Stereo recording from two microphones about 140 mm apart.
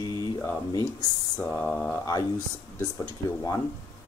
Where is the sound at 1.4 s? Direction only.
20° left (ahead or behind).